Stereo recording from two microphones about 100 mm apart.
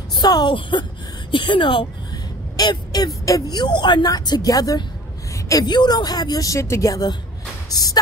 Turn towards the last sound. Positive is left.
turn(degrees=40)  # may be behind; listen again after turning